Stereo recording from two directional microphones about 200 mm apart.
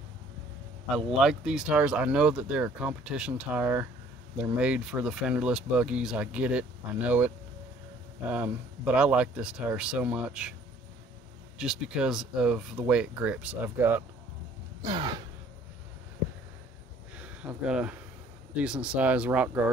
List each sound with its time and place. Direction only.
0.9 s speech: centre (ahead or behind)
11.5 s speech: 5° right (ahead or behind)
14.8 s a sound: 25° right (ahead or behind)
17.2 s speech: 5° right (ahead or behind)